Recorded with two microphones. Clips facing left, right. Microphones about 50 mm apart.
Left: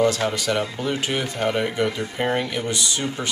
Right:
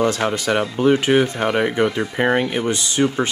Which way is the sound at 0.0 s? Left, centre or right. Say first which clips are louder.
Right 1 dB; right.